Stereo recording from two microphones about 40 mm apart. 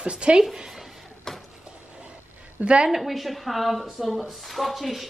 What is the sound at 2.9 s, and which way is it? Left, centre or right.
A woman's voice, centre.